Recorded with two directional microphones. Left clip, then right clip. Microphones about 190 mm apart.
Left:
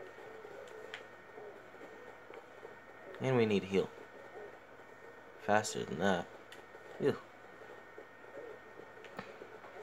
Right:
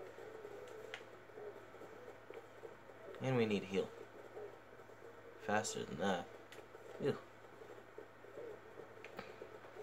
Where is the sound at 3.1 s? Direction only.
40° left (ahead or behind).